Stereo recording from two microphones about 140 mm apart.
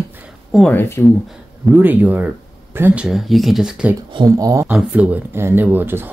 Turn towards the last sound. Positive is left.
turn(degrees=-15)  # may be behind; listen again after turning